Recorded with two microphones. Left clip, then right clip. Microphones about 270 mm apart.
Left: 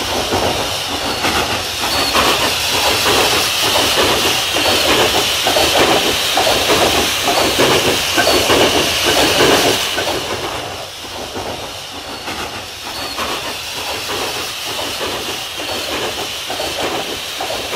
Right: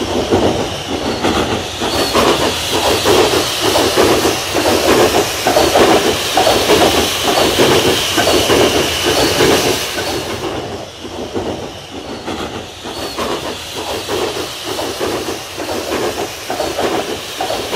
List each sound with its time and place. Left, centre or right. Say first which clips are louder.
1.2 s hiss: right 1 dB; left; by 5.9 s centre
5.9 s train: right 1 dB; centre
6.7 s train: right 2 dB; centre